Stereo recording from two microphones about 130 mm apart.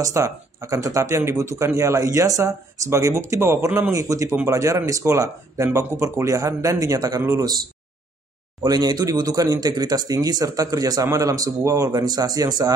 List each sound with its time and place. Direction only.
0.0 s speech: 25° right (ahead or behind)
8.6 s speech: 30° right (ahead or behind)